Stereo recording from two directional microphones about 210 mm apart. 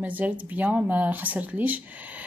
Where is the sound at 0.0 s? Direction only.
5° right (ahead or behind).